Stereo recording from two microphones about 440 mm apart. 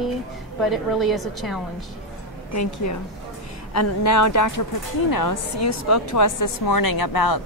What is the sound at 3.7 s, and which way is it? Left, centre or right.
Speech, left.